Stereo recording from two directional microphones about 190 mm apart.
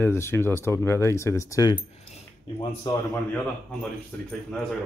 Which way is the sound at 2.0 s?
30° left (ahead or behind).